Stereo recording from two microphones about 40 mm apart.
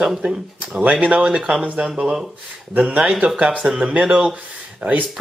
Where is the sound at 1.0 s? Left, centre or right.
Right.